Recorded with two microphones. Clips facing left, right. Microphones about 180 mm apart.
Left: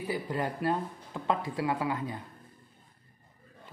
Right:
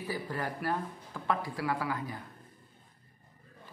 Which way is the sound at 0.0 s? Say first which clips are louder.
Left 4 dB; 20° left (ahead or behind).